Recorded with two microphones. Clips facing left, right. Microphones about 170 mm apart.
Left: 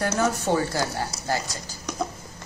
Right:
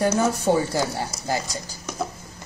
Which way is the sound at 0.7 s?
15° right (ahead or behind).